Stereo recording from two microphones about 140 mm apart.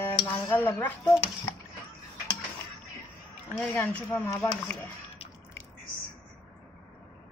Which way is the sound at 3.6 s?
10° left (ahead or behind).